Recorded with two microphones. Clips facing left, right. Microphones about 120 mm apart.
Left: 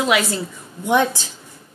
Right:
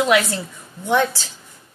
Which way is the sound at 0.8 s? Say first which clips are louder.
Left 1 dB; 15° left (ahead or behind).